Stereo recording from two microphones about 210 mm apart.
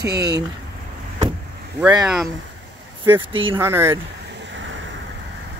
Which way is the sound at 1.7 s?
15° right (ahead or behind).